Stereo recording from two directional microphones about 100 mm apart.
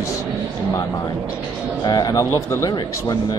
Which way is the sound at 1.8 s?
45° left (ahead or behind).